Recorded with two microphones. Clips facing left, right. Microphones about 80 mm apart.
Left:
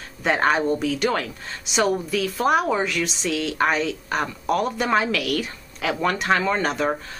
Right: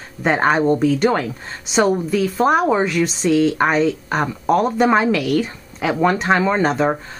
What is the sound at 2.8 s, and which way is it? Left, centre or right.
Speech, right.